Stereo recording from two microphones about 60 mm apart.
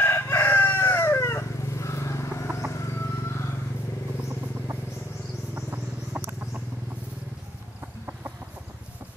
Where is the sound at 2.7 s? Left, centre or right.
Left.